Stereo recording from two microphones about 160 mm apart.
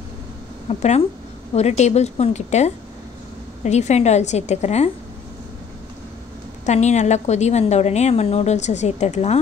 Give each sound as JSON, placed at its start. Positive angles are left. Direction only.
{"t": 0.7, "sound": "a woman's voice", "side_deg": 40}
{"t": 6.6, "sound": "a woman's voice", "side_deg": 45}